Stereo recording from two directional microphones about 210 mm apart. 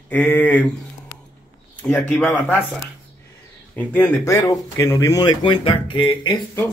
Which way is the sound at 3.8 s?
10° left (ahead or behind).